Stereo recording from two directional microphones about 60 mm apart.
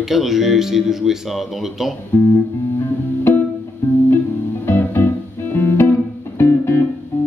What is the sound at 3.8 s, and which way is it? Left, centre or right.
Music, left.